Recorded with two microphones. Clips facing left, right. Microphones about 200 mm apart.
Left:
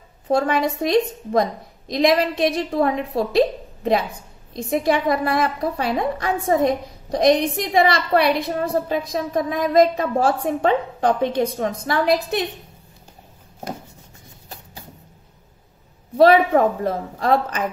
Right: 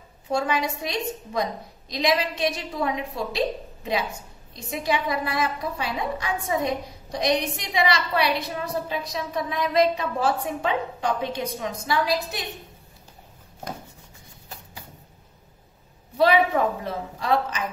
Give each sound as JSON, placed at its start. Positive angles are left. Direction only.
{"t": 0.3, "sound": "a woman's voice", "side_deg": 55}
{"t": 16.2, "sound": "a woman's voice", "side_deg": 50}